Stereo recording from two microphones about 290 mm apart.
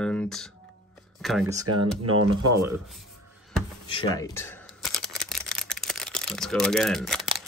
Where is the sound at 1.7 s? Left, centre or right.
Right.